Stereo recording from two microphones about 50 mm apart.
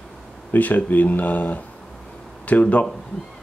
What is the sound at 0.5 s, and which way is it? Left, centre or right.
Speech, left.